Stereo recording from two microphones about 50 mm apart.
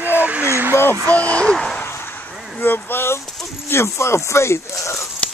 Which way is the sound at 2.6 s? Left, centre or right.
Left.